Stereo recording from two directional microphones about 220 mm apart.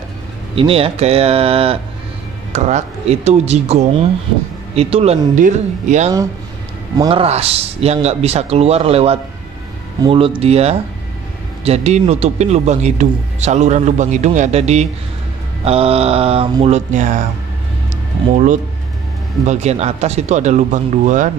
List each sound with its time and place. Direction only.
0.6 s speech: 25° right (ahead or behind)
18.3 s speech: 35° right (ahead or behind)